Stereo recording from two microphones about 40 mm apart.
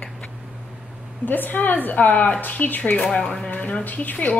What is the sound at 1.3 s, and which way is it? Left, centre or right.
Speech, left.